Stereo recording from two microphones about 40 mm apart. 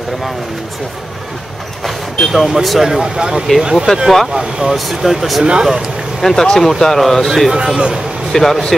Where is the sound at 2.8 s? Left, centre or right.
Centre.